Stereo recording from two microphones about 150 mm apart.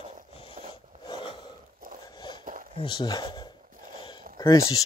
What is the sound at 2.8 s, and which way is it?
Speech, 30° left (ahead or behind).